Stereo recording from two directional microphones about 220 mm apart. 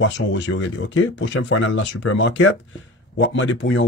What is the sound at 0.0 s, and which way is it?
Speech, 60° left (ahead or behind).